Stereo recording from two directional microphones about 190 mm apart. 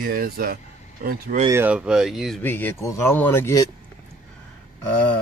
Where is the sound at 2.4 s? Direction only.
10° left (ahead or behind).